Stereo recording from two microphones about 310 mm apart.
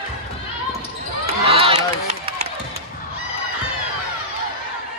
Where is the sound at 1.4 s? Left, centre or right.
Centre.